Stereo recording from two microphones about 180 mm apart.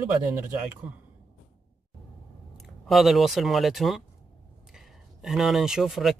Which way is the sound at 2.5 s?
Centre (ahead or behind).